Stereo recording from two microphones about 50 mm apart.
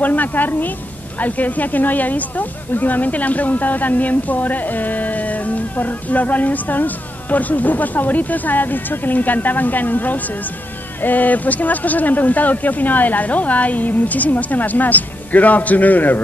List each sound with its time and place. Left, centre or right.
0.0 s speech: left